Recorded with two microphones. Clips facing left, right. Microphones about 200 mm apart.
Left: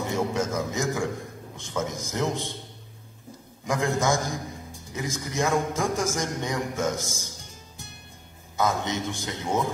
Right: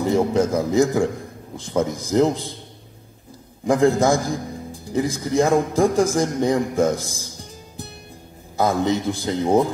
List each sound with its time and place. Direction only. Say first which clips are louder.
0.1 s a man's voice: right 9 dB; 30° right (ahead or behind)
3.6 s a man's voice: right 9 dB; 35° right (ahead or behind)
8.5 s a man's voice: right 7 dB; 35° right (ahead or behind)